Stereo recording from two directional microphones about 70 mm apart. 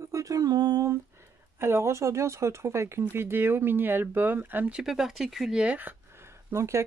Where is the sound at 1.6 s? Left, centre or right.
Right.